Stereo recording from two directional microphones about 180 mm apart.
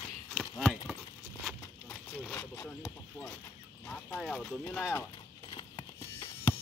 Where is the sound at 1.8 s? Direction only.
10° left (ahead or behind).